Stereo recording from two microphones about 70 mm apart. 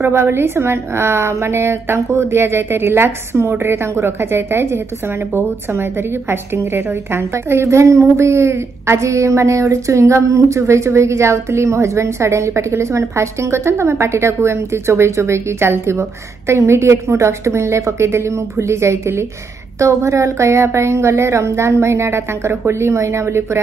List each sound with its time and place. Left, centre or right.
0.0 s a woman's voice: right